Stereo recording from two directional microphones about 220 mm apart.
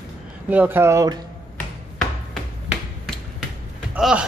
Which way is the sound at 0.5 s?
10° right (ahead or behind).